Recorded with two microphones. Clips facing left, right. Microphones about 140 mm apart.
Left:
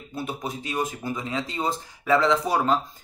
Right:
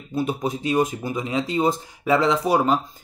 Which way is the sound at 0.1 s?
20° right (ahead or behind).